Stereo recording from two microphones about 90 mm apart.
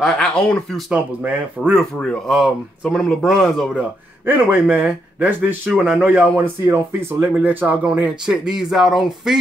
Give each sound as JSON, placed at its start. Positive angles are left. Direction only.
{"t": 0.0, "sound": "speech", "side_deg": 5}
{"t": 0.9, "sound": "a man's voice", "side_deg": -15}
{"t": 1.8, "sound": "speech", "side_deg": 5}
{"t": 4.3, "sound": "a man's voice", "side_deg": -20}
{"t": 7.3, "sound": "a man's voice", "side_deg": -15}